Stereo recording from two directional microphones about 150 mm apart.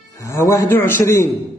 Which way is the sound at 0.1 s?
20° left (ahead or behind).